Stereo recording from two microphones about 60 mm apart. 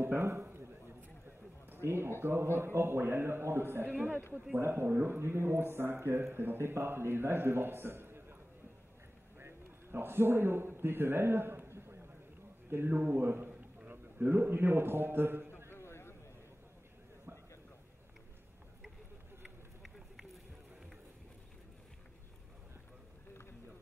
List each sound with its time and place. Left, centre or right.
0.0 s a sound: right
1.7 s speech: right
3.9 s speech: right
4.6 s speech: right
9.4 s a man's voice: right
15.7 s a sound: left